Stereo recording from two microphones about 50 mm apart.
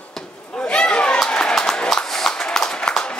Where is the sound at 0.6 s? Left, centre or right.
Centre.